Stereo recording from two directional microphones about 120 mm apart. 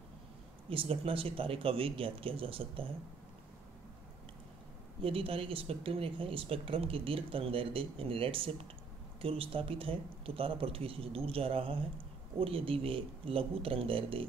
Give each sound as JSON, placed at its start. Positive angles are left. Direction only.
{"t": 0.7, "sound": "speech", "side_deg": -50}
{"t": 5.0, "sound": "speech", "side_deg": -50}